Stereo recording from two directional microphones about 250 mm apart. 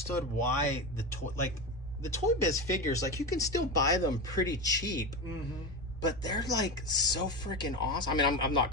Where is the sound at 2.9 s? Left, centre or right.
Centre.